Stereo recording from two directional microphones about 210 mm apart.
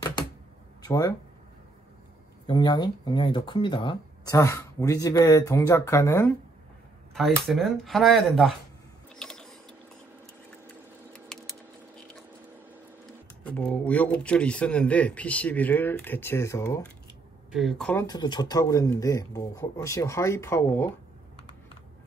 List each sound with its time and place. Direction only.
0.8 s speech: 15° left (ahead or behind)
2.4 s speech: 20° left (ahead or behind)
7.4 s speech: centre (ahead or behind)
9.1 s printer: 5° left (ahead or behind)
11.1 s a sound: centre (ahead or behind)
13.4 s speech: 5° left (ahead or behind)
17.5 s speech: centre (ahead or behind)
18.0 s speech: 20° left (ahead or behind)